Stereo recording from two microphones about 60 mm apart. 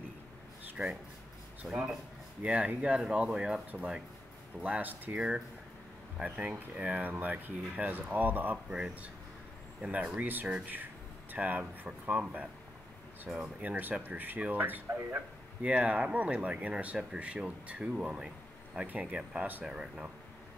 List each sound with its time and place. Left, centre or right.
0.8 s speech: centre
2.4 s speech: right
5.1 s speech: centre; by 8.5 s right
8.6 s speech: centre
10.2 s speech: right
15.6 s speech: right
18.9 s speech: right
19.6 s speech: centre